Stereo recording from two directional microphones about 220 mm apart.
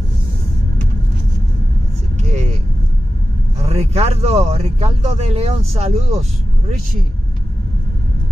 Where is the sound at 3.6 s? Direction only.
30° right (ahead or behind).